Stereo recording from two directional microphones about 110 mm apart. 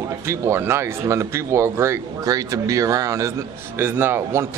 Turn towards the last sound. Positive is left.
turn(degrees=-20)  # may be behind; listen again after turning